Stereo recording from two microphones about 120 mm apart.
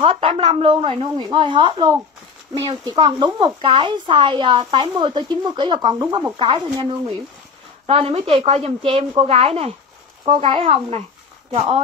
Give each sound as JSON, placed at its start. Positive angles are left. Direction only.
{"t": 0.0, "sound": "speech", "side_deg": -45}
{"t": 6.3, "sound": "speech", "side_deg": -45}